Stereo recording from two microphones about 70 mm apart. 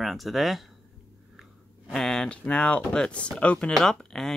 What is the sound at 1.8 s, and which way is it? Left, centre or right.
Speech, centre.